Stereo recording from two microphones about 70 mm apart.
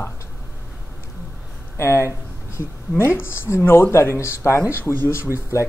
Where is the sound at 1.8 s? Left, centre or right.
Left.